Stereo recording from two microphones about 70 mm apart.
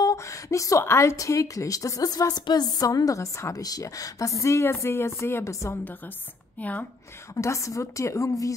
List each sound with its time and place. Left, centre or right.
0.1 s a woman's voice: left
3.6 s a woman's voice: left
6.6 s a woman's voice: left
7.3 s a woman's voice: left